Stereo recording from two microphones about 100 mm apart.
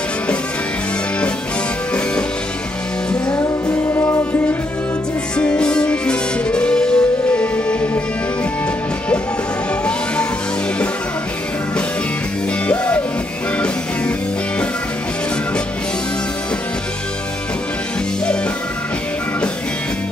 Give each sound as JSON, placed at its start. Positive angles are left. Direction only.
{"t": 3.3, "sound": "music", "side_deg": 20}
{"t": 5.4, "sound": "music", "side_deg": 10}
{"t": 12.6, "sound": "music", "side_deg": 15}